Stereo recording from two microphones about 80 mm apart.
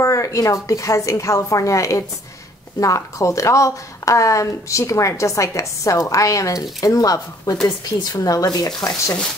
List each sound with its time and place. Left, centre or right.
0.0 s a woman's voice: left